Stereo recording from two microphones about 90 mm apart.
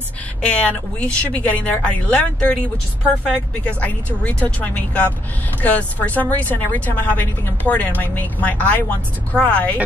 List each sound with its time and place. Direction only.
0.6 s a woman's voice: 15° left (ahead or behind)